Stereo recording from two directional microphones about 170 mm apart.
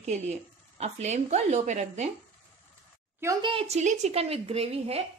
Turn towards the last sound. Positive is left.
turn(degrees=-35)  # may be behind; listen again after turning